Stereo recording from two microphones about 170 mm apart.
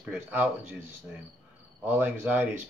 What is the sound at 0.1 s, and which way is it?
Speech, 10° right (ahead or behind).